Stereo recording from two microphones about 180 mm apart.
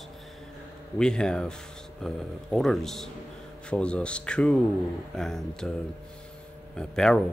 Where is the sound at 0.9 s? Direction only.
5° left (ahead or behind).